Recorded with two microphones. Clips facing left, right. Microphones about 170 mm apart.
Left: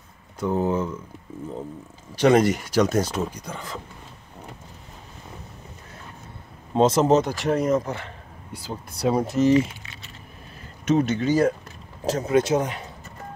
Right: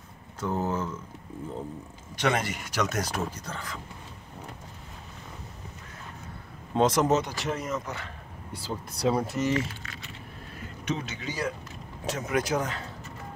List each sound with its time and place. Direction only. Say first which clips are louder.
0.4 s speech: left 6 dB; 15° left (ahead or behind)
2.1 s speech: left 10 dB; 35° left (ahead or behind)
3.3 s speech: left 2 dB; 15° left (ahead or behind)
6.7 s speech: left 5 dB; 25° left (ahead or behind)
7.2 s speech: left 7 dB; 50° left (ahead or behind)
7.5 s speech: left 10 dB; 35° left (ahead or behind)
9.1 s speech: left 10 dB; 20° left (ahead or behind)
10.9 s speech: left 13 dB; 50° left (ahead or behind)
12.1 s speech: left 7 dB; 30° left (ahead or behind)